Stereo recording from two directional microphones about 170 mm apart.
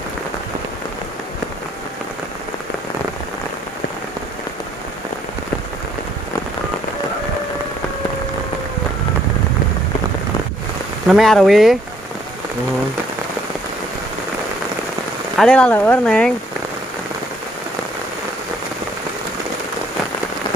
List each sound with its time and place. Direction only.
11.1 s speech: centre (ahead or behind)
15.3 s speech: 5° left (ahead or behind)